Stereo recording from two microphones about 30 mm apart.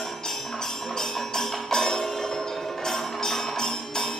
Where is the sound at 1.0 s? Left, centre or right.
Centre.